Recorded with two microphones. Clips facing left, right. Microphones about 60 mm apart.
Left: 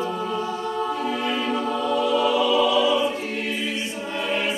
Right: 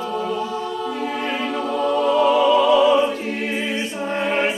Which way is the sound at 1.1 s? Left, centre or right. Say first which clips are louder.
Even; right.